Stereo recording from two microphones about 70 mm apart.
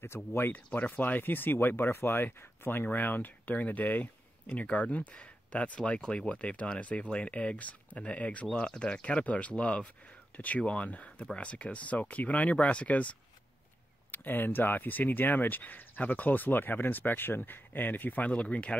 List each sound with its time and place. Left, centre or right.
0.0 s speech: left
14.1 s speech: left